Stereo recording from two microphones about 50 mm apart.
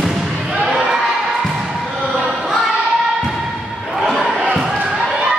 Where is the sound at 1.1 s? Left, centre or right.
Centre.